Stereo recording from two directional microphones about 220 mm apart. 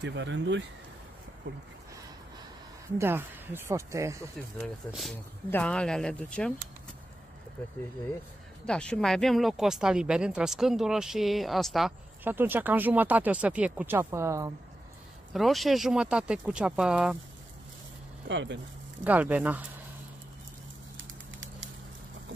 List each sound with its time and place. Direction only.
0.0 s speech: 55° right (ahead or behind)
3.0 s speech: 10° right (ahead or behind)
4.9 s speech: centre (ahead or behind)
8.6 s speech: 5° left (ahead or behind); by 14.5 s 15° right (ahead or behind)
15.3 s speech: centre (ahead or behind)
18.3 s speech: 55° right (ahead or behind)
19.0 s speech: 5° right (ahead or behind)
21.3 s a sound: 60° right (ahead or behind)